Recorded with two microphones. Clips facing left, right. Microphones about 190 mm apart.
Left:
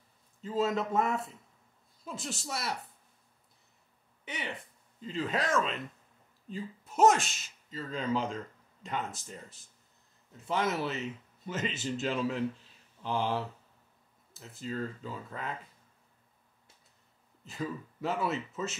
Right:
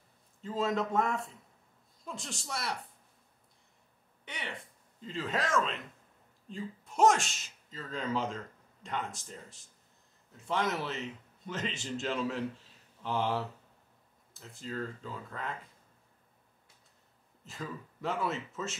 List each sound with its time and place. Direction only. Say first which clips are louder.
0.4 s speech: left 1 dB; centre (ahead or behind)
4.2 s a sound: left 4 dB; 5° left (ahead or behind)
5.0 s speech: left 2 dB; centre (ahead or behind)
17.5 s speech: left 5 dB; centre (ahead or behind)